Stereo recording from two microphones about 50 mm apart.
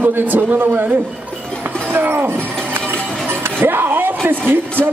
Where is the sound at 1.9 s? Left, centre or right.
Right.